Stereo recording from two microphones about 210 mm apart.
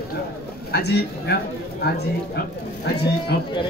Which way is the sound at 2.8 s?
50° left (ahead or behind).